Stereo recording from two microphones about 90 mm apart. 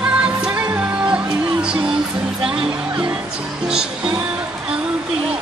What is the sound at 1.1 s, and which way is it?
Music, 10° right (ahead or behind).